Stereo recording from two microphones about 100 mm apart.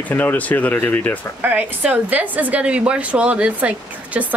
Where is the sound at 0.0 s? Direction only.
20° left (ahead or behind).